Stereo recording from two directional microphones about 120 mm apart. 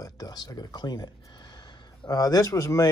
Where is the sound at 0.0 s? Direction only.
30° left (ahead or behind).